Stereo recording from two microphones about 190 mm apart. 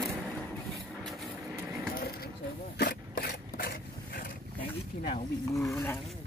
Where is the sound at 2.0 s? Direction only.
55° left (ahead or behind).